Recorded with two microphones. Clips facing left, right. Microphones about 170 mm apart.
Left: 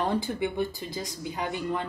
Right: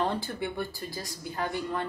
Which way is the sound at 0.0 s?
15° left (ahead or behind).